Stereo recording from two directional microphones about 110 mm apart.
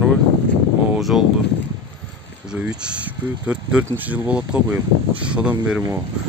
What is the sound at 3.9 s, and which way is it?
Speech, 45° right (ahead or behind).